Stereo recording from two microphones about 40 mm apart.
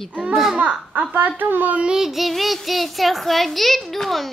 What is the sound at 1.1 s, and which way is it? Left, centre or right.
Speech, right.